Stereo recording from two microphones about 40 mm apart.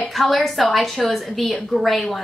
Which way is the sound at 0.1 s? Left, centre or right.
Centre.